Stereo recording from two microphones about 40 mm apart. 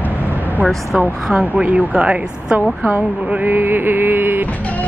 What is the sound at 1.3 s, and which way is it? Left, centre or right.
A woman's voice, centre.